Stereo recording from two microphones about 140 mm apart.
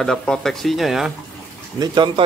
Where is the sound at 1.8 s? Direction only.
35° right (ahead or behind).